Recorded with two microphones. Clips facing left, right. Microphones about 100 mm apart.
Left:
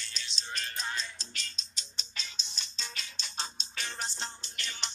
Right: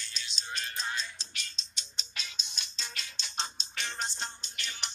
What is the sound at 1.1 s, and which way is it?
Music, 20° right (ahead or behind).